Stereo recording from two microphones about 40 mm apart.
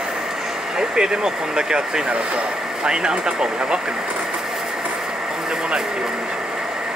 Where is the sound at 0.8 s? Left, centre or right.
Centre.